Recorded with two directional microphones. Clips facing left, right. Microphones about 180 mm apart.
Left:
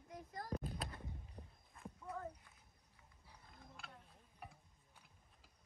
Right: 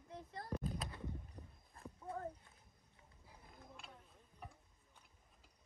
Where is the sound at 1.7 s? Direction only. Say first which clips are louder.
Right 2 dB; 30° right (ahead or behind).